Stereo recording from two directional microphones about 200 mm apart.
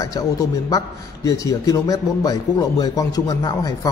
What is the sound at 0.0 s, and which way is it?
A man's voice, 15° left (ahead or behind).